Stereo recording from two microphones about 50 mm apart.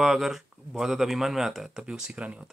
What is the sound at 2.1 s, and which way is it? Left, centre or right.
Speech, right.